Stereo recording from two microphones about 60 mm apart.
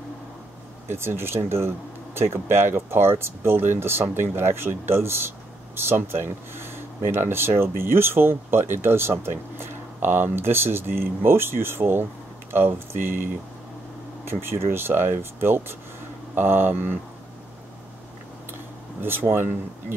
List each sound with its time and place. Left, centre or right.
0.8 s speech: right
14.2 s speech: right
18.9 s speech: right